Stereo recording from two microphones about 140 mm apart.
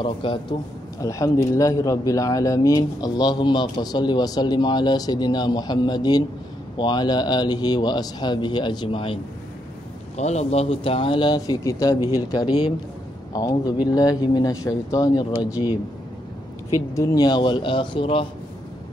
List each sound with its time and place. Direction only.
0.0 s a man's voice: 35° left (ahead or behind)
1.0 s a man's voice: 25° left (ahead or behind); by 9.2 s 40° left (ahead or behind)
10.1 s a man's voice: 50° left (ahead or behind); by 15.2 s 25° left (ahead or behind)
15.5 s speech: 10° right (ahead or behind)
16.9 s a man's voice: 25° left (ahead or behind); by 18.2 s 40° left (ahead or behind)